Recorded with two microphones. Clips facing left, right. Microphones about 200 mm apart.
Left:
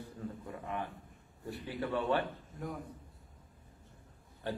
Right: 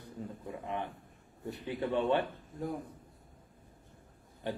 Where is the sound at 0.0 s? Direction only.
20° right (ahead or behind).